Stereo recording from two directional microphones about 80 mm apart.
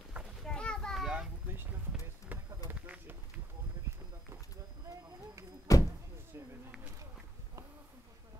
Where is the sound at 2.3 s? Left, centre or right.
Right.